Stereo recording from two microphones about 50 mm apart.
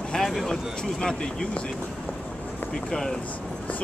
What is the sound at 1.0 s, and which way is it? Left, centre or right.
Speech, centre.